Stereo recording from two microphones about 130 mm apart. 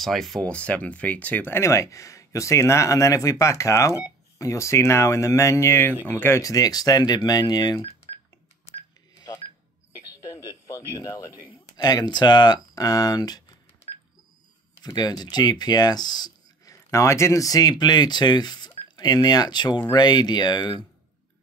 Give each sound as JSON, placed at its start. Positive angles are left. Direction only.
{"t": 0.0, "sound": "speech", "side_deg": 0}
{"t": 10.2, "sound": "a sound", "side_deg": 30}
{"t": 11.0, "sound": "speech", "side_deg": 30}
{"t": 15.0, "sound": "speech", "side_deg": 30}